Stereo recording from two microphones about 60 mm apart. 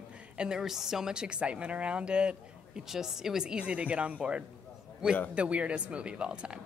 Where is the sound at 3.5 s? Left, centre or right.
Right.